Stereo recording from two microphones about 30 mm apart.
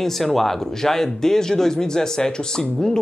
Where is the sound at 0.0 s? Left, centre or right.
Centre.